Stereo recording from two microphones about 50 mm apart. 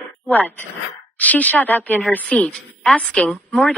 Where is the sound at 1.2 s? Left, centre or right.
Left.